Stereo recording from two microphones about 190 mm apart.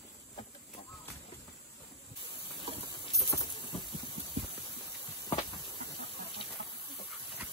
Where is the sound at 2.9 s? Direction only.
25° left (ahead or behind).